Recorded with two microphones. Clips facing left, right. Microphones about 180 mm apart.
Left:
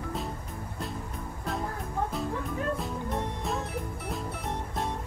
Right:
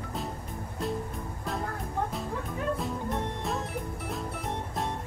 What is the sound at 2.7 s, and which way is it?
Music, centre (ahead or behind).